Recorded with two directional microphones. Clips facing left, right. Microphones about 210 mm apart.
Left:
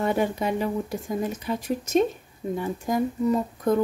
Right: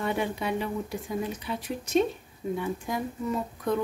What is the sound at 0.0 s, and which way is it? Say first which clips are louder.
Speech: left 5 dB; 45° left (ahead or behind).